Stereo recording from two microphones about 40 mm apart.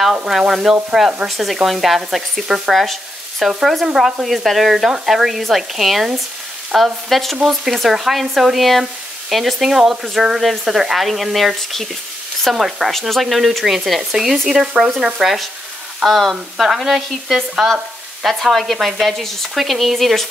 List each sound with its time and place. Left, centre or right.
0.3 s speech: centre
1.2 s stir: centre
2.0 s speech: centre
2.8 s speech: centre
3.6 s stir: centre
9.3 s speech: centre
10.6 s stir: centre
14.1 s speech: centre
16.1 s stir: centre
18.2 s stir: centre
18.8 s stir: centre